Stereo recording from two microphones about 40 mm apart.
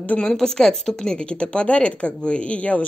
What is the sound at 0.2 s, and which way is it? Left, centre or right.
Speech, centre.